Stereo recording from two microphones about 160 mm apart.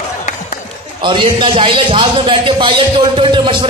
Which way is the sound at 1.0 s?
30° right (ahead or behind).